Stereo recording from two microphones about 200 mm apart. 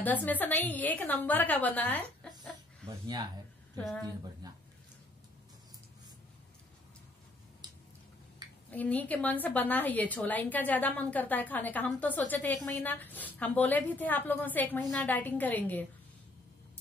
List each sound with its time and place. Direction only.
0.0 s a woman's voice: 10° left (ahead or behind)
2.9 s speech: 20° right (ahead or behind)
4.4 s speech: 20° right (ahead or behind)
8.6 s a woman's voice: 10° left (ahead or behind)